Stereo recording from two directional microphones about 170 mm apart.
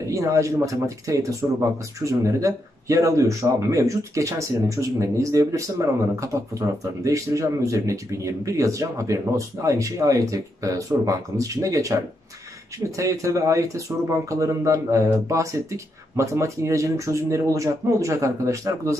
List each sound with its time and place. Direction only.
0.1 s speech: 20° right (ahead or behind)